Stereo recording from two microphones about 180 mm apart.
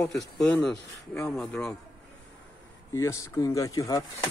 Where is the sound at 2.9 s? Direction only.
15° left (ahead or behind).